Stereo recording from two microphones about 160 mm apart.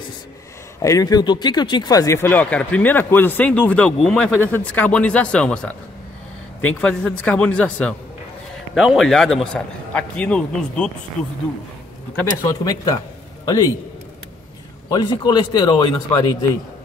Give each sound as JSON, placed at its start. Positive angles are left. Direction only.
{"t": 0.7, "sound": "a man's voice", "side_deg": 20}
{"t": 12.2, "sound": "speech", "side_deg": 20}
{"t": 14.9, "sound": "speech", "side_deg": 25}